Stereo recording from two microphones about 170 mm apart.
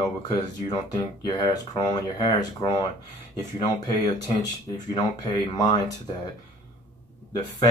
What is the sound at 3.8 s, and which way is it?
Speech, 25° left (ahead or behind).